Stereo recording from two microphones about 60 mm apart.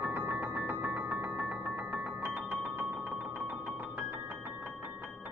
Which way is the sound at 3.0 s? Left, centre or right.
Right.